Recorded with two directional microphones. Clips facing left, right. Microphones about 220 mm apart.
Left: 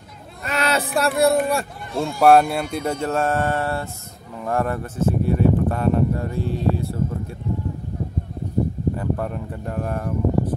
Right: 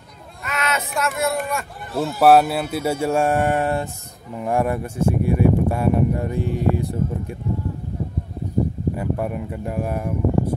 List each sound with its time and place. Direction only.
0.4 s baby cry: 30° left (ahead or behind)
2.0 s speech: 5° right (ahead or behind)
8.9 s speech: 10° right (ahead or behind)